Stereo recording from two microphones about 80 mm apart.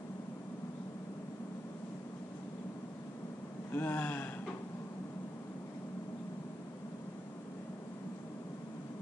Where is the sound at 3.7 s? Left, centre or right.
Left.